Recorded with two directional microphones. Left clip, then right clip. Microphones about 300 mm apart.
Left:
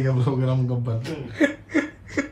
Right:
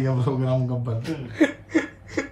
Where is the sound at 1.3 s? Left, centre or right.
Right.